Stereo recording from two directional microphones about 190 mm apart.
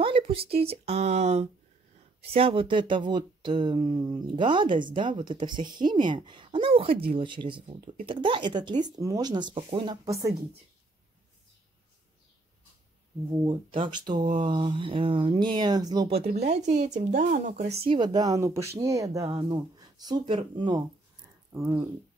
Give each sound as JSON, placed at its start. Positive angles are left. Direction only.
{"t": 0.0, "sound": "a sound", "side_deg": -30}
{"t": 0.7, "sound": "speech", "side_deg": -35}
{"t": 13.4, "sound": "speech", "side_deg": -25}
{"t": 16.1, "sound": "speech", "side_deg": -35}
{"t": 17.8, "sound": "speech", "side_deg": -25}